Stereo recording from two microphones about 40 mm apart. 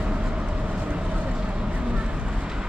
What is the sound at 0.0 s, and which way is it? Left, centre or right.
Vehicle, right.